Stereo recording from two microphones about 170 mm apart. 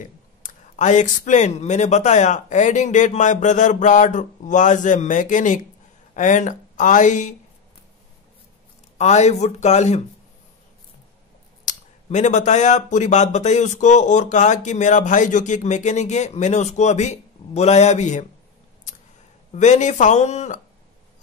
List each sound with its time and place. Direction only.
0.0 s speech: 50° left (ahead or behind)
8.9 s speech: 40° left (ahead or behind)
11.6 s speech: 45° left (ahead or behind)
19.5 s speech: 45° left (ahead or behind)